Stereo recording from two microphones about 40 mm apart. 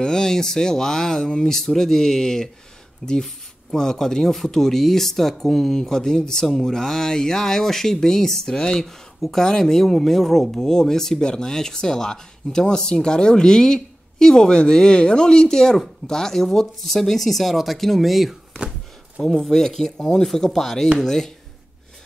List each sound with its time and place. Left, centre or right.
0.0 s speech: centre
6.4 s speech: centre
19.3 s speech: centre